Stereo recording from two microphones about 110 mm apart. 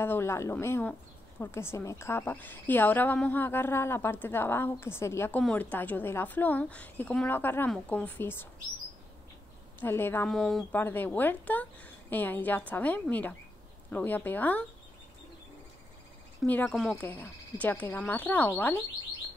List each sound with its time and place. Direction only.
0.0 s a woman's voice: 20° left (ahead or behind)
9.8 s a woman's voice: 20° left (ahead or behind)
10.2 s speech: 5° left (ahead or behind)
10.7 s a woman's voice: 20° left (ahead or behind)
16.4 s a woman's voice: 15° left (ahead or behind)
16.7 s speech: centre (ahead or behind)
17.0 s a woman's voice: 15° left (ahead or behind)